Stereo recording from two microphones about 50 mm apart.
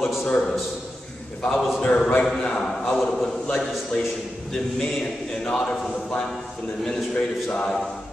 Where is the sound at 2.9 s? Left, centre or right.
Centre.